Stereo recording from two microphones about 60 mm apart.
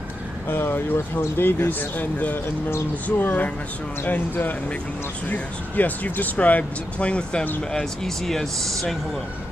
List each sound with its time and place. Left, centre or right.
0.5 s speech: left; by 7.4 s centre
7.7 s speech: centre